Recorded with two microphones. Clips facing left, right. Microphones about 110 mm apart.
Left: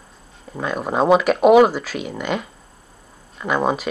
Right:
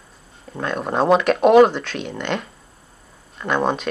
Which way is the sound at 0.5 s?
Centre (ahead or behind).